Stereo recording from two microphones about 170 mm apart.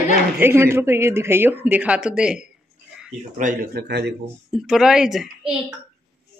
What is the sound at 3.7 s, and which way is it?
Speech, 75° right (ahead or behind).